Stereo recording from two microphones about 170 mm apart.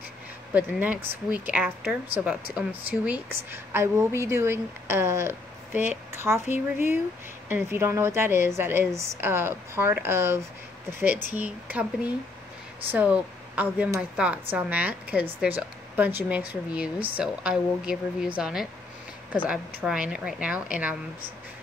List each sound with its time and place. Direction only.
0.6 s speech: 10° right (ahead or behind)
12.9 s speech: 10° right (ahead or behind)